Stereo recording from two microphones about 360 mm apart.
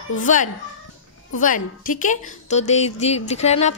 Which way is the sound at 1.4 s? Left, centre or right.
Left.